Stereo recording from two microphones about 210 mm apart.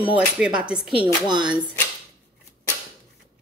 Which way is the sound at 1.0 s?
20° right (ahead or behind).